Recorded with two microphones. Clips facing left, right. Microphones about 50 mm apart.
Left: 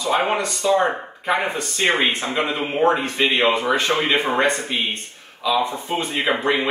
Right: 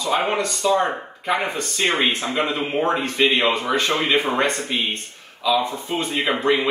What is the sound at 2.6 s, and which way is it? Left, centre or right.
Speech, centre.